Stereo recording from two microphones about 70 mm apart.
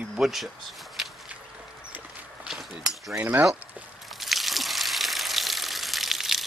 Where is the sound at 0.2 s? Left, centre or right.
Centre.